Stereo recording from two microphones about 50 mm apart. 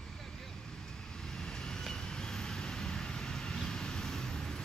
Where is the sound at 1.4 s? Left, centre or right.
Centre.